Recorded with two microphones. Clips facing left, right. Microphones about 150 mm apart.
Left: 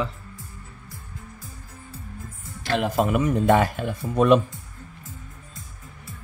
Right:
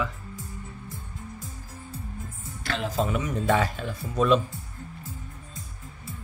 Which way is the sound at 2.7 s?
60° left (ahead or behind).